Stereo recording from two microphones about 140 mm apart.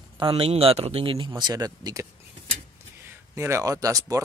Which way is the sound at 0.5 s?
45° right (ahead or behind).